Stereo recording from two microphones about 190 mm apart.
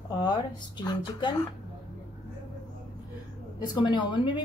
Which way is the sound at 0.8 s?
25° left (ahead or behind).